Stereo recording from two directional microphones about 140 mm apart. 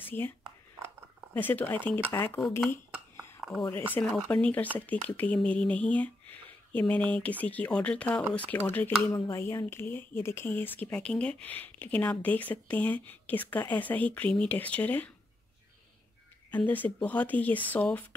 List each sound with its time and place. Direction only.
0.0 s speech: 15° left (ahead or behind)
1.3 s speech: 15° left (ahead or behind)
3.3 s a sound: centre (ahead or behind)
3.9 s speech: 10° left (ahead or behind)
16.4 s speech: 10° left (ahead or behind)